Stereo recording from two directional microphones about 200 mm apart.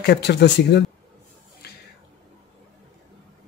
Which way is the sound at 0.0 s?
60° left (ahead or behind).